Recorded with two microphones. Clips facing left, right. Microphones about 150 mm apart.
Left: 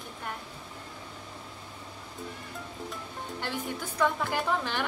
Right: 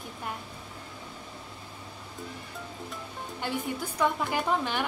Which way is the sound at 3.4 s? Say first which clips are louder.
Right 3 dB; 10° right (ahead or behind).